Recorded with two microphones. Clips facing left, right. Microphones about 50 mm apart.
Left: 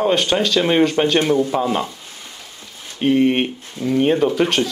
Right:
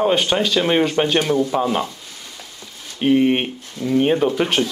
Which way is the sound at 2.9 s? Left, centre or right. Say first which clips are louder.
Even; centre.